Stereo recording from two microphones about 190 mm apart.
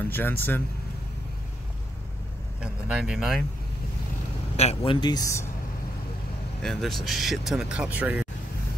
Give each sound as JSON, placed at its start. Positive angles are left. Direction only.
{"t": 0.1, "sound": "speech", "side_deg": 10}
{"t": 2.6, "sound": "speech", "side_deg": -5}
{"t": 4.6, "sound": "a man's voice", "side_deg": 30}
{"t": 6.6, "sound": "speech", "side_deg": 0}